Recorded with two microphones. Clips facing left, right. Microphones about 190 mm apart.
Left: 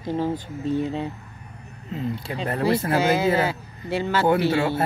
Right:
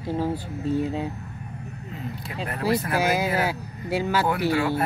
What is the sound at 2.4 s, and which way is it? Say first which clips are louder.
Speech: left 3 dB; 30° left (ahead or behind).